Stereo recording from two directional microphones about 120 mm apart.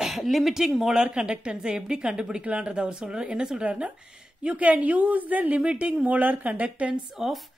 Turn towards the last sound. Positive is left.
turn(degrees=0)  # may be behind; listen again after turning